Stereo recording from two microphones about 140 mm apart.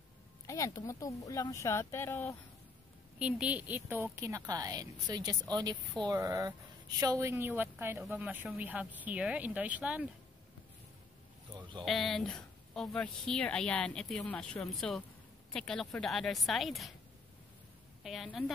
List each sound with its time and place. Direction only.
0.5 s speech: 20° left (ahead or behind)
3.2 s a woman's voice: 10° right (ahead or behind)
11.8 s a woman's voice: centre (ahead or behind)
18.0 s a woman's voice: centre (ahead or behind)